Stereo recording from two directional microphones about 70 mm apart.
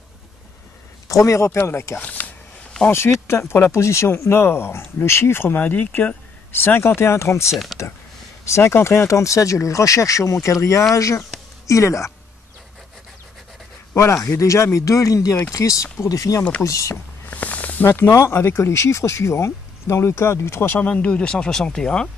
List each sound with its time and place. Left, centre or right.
1.0 s a man's voice: left
2.0 s speech: left
2.9 s speech: left
7.5 s speech: centre
8.5 s speech: left
13.9 s speech: left
16.9 s a sound: left
17.9 s speech: left
20.8 s speech: centre